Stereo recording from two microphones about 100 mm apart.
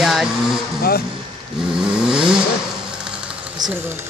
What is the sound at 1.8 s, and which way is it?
Vehicle, 10° right (ahead or behind).